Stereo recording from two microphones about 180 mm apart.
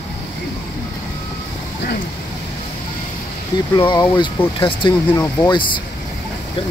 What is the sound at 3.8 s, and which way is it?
Speech, 25° left (ahead or behind).